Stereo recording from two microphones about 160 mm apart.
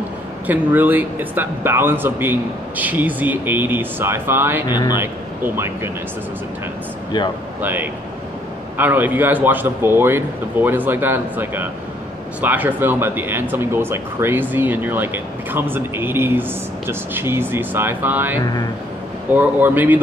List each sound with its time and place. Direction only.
0.5 s speech: 10° right (ahead or behind)
4.6 s speech: 25° left (ahead or behind)
4.9 s speech: 15° right (ahead or behind)
7.6 s speech: 10° right (ahead or behind)